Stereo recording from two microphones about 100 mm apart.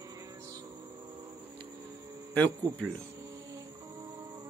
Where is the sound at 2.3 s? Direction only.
15° left (ahead or behind).